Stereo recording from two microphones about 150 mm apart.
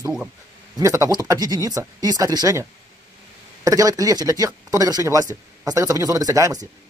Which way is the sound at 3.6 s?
25° right (ahead or behind).